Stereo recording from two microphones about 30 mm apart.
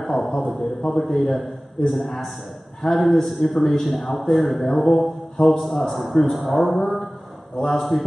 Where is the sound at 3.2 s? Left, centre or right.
Centre.